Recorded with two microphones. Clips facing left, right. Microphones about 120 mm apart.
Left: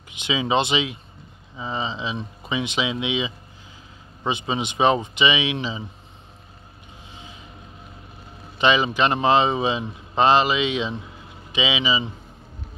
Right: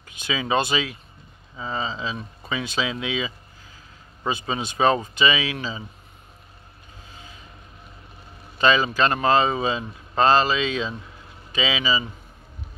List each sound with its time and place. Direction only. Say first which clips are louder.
0.1 s speech: left 2 dB; 20° left (ahead or behind)
7.1 s vehicle: left 2 dB; 25° left (ahead or behind)
8.5 s speech: even; 20° left (ahead or behind)